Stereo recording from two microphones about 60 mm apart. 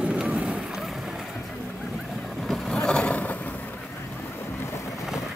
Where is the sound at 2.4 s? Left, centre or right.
Centre; by 3.3 s left.